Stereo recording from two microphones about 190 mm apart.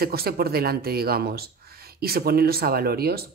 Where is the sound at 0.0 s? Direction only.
55° right (ahead or behind).